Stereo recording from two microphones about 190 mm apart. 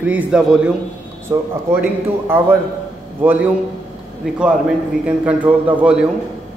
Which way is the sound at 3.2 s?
10° right (ahead or behind).